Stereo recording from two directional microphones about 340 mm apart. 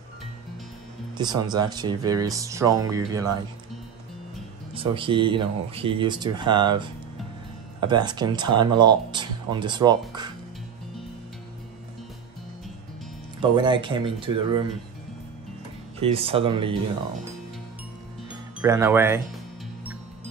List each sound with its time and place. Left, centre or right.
1.1 s speech: centre
4.7 s speech: centre
13.4 s speech: centre
16.0 s speech: centre
18.6 s speech: centre